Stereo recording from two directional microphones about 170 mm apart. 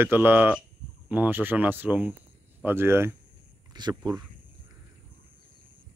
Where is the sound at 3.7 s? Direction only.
25° right (ahead or behind).